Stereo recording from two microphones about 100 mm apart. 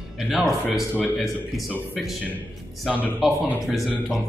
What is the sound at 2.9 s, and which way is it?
Speech, 10° right (ahead or behind).